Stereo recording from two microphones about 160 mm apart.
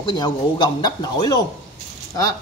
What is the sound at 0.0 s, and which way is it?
A woman's voice, 25° left (ahead or behind).